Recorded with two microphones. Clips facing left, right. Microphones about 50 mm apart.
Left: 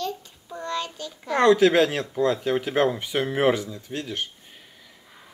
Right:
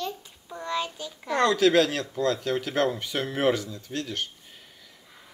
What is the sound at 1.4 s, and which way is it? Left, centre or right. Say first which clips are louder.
Speech: left 3 dB; left.